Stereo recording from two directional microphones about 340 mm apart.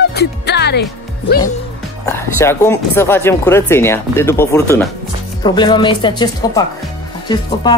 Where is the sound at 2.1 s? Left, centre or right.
Centre.